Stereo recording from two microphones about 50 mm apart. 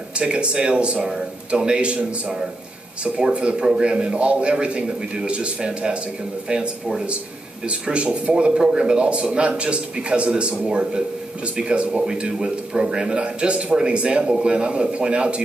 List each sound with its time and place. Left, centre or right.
0.2 s speech: right